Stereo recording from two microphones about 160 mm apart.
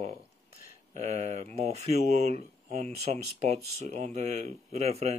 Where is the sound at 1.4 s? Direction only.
45° right (ahead or behind).